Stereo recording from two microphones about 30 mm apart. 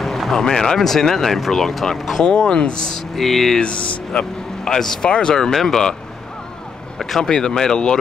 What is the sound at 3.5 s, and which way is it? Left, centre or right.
Speech, left.